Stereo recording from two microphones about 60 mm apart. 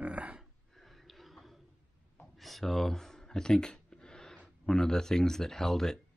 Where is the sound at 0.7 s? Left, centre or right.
Centre.